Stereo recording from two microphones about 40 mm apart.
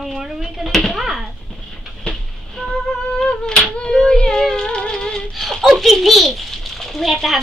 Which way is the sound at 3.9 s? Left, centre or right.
Centre.